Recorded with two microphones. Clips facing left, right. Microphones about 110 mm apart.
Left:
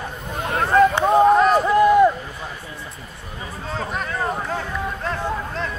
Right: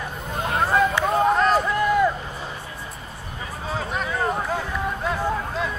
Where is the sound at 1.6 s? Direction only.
25° left (ahead or behind).